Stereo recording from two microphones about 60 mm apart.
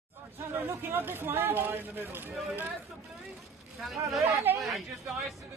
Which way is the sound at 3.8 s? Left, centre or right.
Centre.